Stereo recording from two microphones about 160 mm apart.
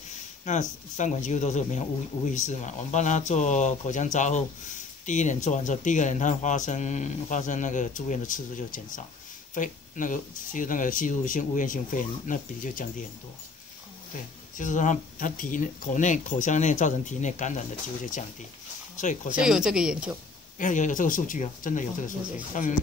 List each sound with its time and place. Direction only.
0.5 s speech: 50° left (ahead or behind)
14.6 s speech: 50° left (ahead or behind)
18.9 s speech: 50° left (ahead or behind)
19.4 s speech: 5° right (ahead or behind)
20.5 s speech: 50° left (ahead or behind)